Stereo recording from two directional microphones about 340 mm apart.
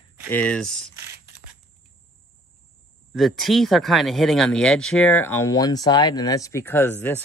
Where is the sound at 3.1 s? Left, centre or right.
Centre.